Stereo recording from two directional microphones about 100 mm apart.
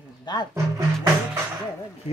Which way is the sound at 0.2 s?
45° left (ahead or behind).